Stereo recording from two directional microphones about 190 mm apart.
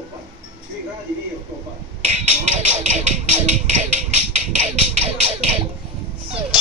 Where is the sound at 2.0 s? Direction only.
35° right (ahead or behind).